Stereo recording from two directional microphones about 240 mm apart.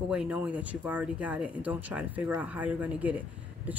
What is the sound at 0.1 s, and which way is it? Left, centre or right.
Speech, centre.